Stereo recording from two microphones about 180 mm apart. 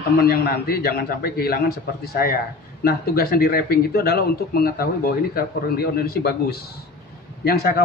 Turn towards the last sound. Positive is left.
turn(degrees=60)  # may be behind; listen again after turning